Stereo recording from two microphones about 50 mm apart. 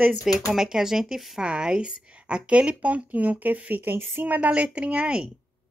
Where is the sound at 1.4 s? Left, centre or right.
Centre.